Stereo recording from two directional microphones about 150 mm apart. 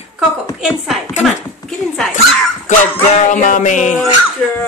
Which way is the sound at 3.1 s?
55° left (ahead or behind).